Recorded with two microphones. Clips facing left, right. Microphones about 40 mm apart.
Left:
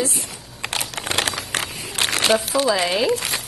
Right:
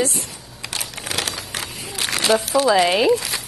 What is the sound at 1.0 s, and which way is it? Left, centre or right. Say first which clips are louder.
Crumpling: left 3 dB; left.